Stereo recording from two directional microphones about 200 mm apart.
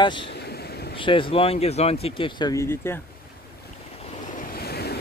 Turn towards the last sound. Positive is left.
turn(degrees=50)  # may be behind; listen again after turning